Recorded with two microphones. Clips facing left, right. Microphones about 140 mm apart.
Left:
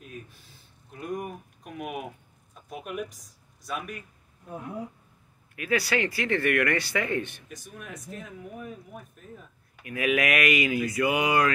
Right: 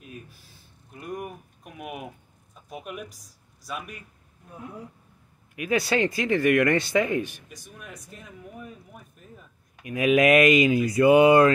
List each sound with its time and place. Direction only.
0.9 s a sound: centre (ahead or behind)
2.7 s speech: centre (ahead or behind)
5.6 s speech: 20° right (ahead or behind)
7.5 s speech: centre (ahead or behind)
9.8 s speech: 20° right (ahead or behind)